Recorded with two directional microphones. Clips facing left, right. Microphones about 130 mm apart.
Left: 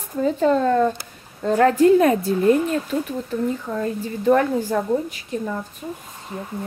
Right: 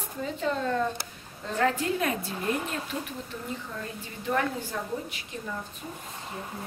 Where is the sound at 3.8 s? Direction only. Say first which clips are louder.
Left 14 dB; 50° left (ahead or behind).